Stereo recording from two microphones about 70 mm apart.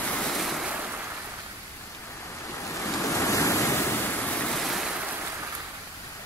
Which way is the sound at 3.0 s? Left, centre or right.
Left.